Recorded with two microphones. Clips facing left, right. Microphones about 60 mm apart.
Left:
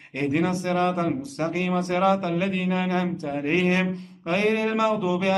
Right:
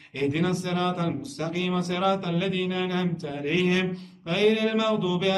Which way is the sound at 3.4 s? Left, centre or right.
Left.